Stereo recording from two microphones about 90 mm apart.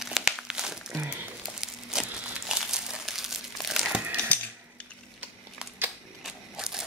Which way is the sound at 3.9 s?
15° right (ahead or behind).